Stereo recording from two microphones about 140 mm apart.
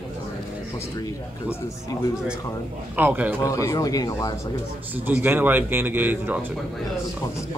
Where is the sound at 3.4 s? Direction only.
25° left (ahead or behind).